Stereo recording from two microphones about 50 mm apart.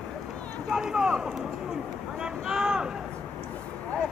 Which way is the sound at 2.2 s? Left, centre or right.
Centre.